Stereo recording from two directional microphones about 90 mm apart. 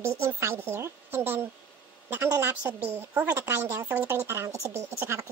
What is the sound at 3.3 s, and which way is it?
A woman's voice, 30° right (ahead or behind).